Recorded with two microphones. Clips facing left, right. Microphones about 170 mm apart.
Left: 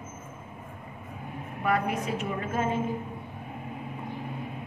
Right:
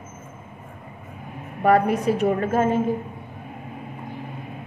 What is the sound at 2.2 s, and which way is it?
Speech, 50° right (ahead or behind).